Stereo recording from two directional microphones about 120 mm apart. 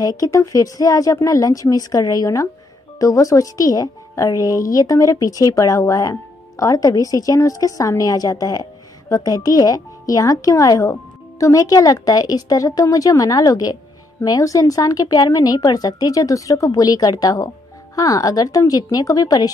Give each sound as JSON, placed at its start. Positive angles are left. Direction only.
{"t": 0.0, "sound": "a woman's voice", "side_deg": 30}